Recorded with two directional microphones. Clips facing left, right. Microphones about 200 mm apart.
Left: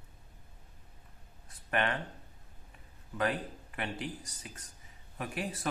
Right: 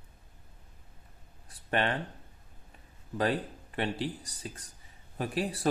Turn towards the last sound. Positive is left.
turn(degrees=-35)  # may be behind; listen again after turning